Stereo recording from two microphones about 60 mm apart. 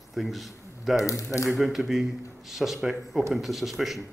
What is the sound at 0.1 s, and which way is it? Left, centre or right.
Speech, centre.